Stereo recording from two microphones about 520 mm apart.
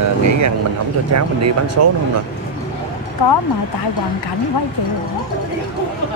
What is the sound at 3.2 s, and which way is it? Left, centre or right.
Speech, left.